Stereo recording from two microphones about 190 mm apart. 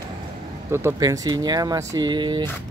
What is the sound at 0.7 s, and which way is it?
Speech, 15° right (ahead or behind).